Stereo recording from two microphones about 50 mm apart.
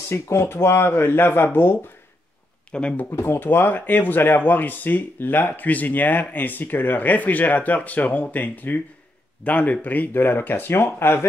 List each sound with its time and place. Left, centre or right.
0.1 s speech: left
2.7 s speech: centre
3.1 s speech: left
5.5 s speech: left